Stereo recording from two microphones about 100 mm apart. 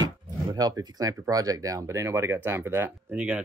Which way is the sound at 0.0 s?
40° right (ahead or behind).